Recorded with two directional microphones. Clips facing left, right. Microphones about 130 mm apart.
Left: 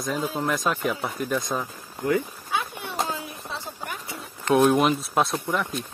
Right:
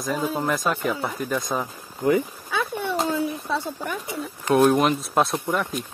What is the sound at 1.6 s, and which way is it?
Speech, 20° right (ahead or behind).